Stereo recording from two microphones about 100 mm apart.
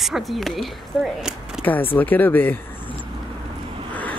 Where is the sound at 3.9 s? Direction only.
15° left (ahead or behind).